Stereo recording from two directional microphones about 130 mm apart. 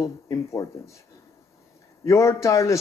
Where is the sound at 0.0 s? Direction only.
25° left (ahead or behind).